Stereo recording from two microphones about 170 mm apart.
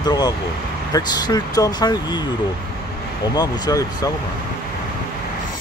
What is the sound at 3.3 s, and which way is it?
Speech, 25° left (ahead or behind).